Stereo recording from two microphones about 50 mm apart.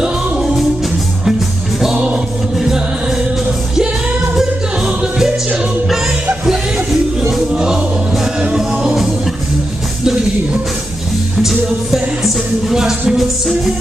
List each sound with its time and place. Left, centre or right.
0.0 s music: centre
4.8 s music: centre
6.4 s music: centre
11.3 s music: centre